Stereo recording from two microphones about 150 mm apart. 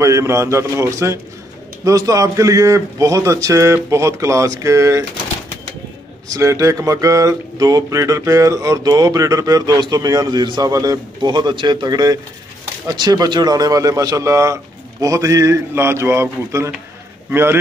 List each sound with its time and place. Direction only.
0.0 s speech: 20° right (ahead or behind)
6.2 s a man's voice: 25° right (ahead or behind)